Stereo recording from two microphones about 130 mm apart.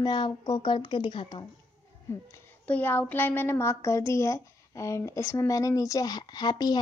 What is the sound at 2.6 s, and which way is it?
A woman's voice, 15° left (ahead or behind).